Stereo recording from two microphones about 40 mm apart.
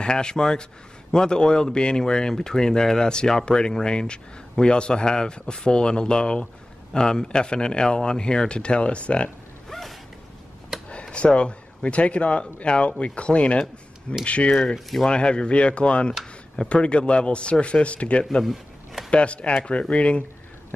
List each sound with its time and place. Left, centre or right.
0.0 s speech: left
9.7 s a sound: centre
10.9 s speech: left
14.5 s speech: centre
18.4 s a sound: centre
19.0 s speech: left